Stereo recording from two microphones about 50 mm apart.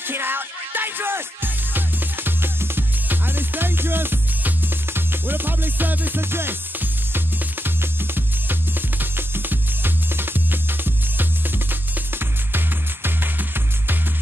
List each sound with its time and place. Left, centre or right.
0.0 s music: right